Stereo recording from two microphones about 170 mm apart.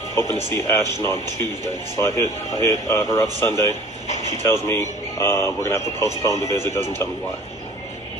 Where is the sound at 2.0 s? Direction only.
15° left (ahead or behind).